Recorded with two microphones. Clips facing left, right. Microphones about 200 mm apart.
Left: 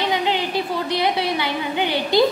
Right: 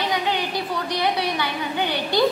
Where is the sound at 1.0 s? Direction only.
20° left (ahead or behind).